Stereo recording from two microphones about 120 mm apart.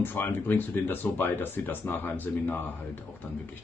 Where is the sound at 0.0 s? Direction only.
15° left (ahead or behind).